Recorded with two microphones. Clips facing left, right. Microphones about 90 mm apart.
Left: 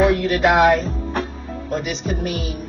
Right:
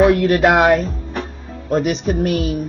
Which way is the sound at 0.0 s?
50° right (ahead or behind).